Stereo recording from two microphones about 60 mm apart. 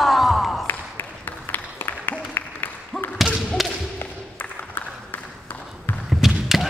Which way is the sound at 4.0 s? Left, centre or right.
Left.